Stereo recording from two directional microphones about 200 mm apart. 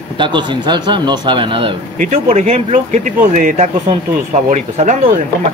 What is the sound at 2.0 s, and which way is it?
Speech, 40° right (ahead or behind).